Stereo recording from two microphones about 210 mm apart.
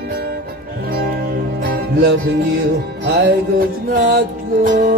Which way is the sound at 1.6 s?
45° right (ahead or behind).